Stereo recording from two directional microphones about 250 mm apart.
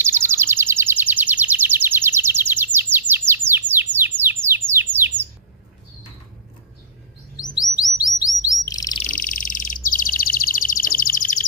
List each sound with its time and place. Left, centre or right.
0.0 s bird: centre
7.5 s chirp: centre
9.1 s bird: left